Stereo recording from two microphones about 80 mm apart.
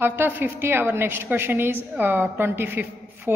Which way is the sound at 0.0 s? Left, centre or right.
Right.